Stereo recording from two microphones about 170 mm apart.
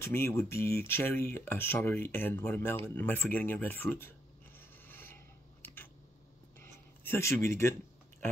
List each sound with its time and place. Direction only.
0.0 s speech: 15° left (ahead or behind)
4.6 s a sound: 10° left (ahead or behind)
7.1 s speech: 15° left (ahead or behind)